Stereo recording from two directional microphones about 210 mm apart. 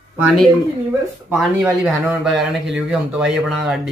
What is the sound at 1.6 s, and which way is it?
Speech, 5° right (ahead or behind).